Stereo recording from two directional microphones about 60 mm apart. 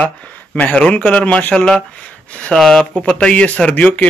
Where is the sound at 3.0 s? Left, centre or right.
Left.